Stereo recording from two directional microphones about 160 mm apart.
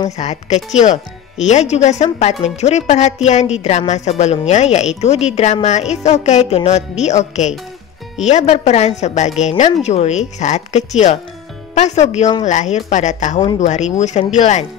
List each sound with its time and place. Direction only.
0.2 s a woman's voice: 45° left (ahead or behind)